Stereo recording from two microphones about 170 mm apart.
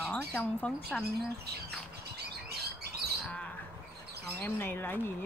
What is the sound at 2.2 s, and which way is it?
Bird, 70° right (ahead or behind).